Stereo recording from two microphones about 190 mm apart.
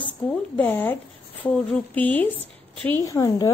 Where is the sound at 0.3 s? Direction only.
10° left (ahead or behind).